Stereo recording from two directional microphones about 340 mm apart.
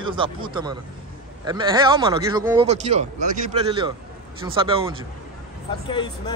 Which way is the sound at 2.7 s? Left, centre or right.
Centre.